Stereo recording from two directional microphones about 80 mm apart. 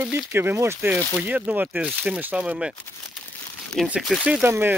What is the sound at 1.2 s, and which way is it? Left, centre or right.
Speech, centre.